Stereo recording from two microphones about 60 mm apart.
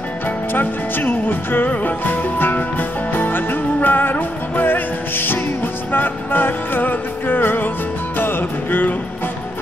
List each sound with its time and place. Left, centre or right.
0.5 s music: left